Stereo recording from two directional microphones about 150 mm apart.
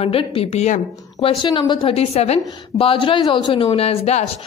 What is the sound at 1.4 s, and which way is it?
A woman's voice, 30° left (ahead or behind).